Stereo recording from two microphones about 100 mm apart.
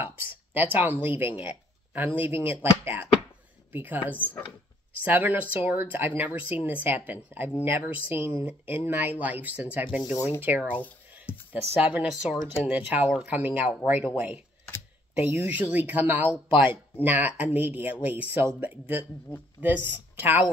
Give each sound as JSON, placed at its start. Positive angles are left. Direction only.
{"t": 0.5, "sound": "speech", "side_deg": -15}
{"t": 5.0, "sound": "speech", "side_deg": -20}
{"t": 11.3, "sound": "a sound", "side_deg": 25}
{"t": 11.8, "sound": "speech", "side_deg": -15}